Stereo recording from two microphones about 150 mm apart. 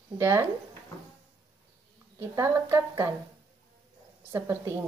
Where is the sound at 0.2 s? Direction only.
15° right (ahead or behind).